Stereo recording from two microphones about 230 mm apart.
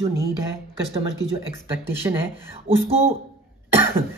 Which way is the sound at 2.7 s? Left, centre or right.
Right.